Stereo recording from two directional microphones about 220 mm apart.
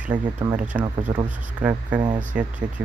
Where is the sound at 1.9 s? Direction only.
20° right (ahead or behind).